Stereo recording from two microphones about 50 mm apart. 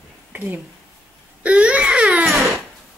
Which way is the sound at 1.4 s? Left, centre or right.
Right.